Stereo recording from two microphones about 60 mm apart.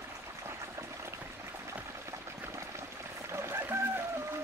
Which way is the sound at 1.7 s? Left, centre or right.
Right.